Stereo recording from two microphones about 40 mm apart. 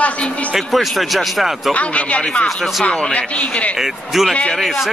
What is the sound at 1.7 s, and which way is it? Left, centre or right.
A man's voice, left.